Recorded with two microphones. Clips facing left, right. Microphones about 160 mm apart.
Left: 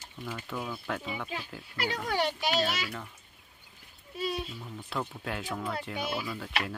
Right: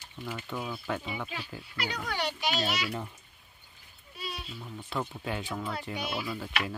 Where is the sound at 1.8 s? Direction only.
45° left (ahead or behind).